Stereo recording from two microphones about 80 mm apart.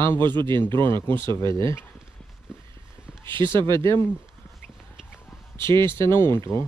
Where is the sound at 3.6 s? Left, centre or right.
Right.